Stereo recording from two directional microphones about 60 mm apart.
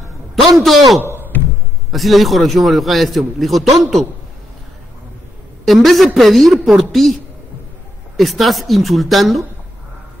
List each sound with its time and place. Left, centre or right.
0.4 s a man's voice: centre
1.0 s a sound: right
1.9 s a man's voice: centre
5.7 s a man's voice: centre
8.2 s a man's voice: centre